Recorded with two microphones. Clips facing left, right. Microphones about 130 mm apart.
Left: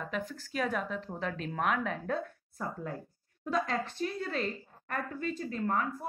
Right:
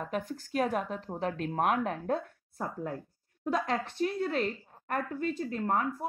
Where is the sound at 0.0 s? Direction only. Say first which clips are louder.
Right 2 dB; 50° right (ahead or behind).